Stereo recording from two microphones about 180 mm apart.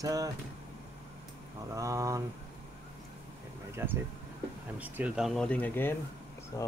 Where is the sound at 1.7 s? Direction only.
15° right (ahead or behind).